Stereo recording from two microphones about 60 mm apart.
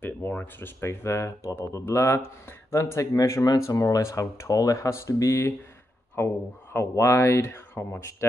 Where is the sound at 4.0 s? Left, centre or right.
Left.